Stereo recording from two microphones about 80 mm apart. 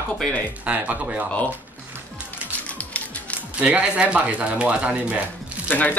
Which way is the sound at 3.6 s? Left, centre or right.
Centre.